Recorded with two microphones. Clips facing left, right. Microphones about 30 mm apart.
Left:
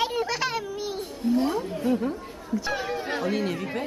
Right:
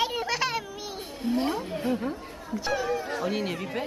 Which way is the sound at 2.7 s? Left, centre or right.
Left.